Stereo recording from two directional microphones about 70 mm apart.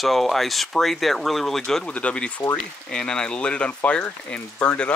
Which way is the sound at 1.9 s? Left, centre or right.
Centre.